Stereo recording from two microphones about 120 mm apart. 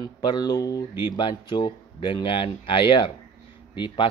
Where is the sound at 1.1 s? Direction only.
40° left (ahead or behind).